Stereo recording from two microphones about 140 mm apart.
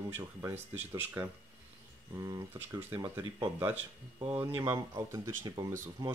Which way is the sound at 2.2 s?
25° right (ahead or behind).